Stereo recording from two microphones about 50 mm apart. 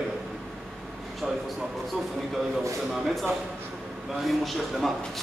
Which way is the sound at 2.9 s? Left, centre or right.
Centre.